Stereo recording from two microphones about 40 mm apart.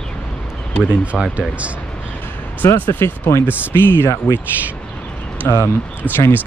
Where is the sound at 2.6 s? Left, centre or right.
Left.